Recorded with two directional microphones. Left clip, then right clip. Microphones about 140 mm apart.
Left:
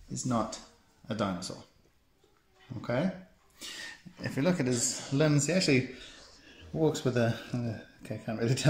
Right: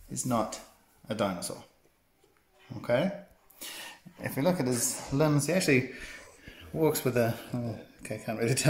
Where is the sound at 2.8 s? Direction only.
10° right (ahead or behind).